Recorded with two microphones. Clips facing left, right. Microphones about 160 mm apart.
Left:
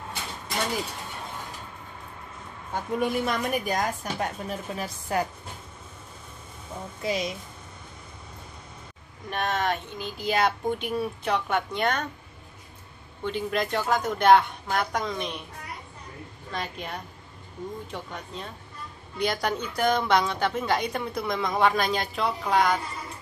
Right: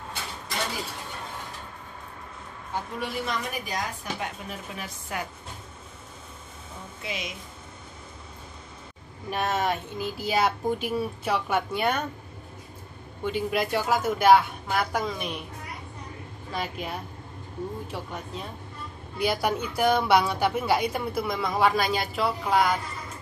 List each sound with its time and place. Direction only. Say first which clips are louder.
3.0 s a woman's voice: left 6 dB; 50° left (ahead or behind)
7.0 s speech: left 7 dB; 35° left (ahead or behind)
9.3 s speech: right 1 dB; 5° right (ahead or behind)
13.2 s speech: right 1 dB; 10° right (ahead or behind)
16.5 s speech: right 2 dB; 5° right (ahead or behind)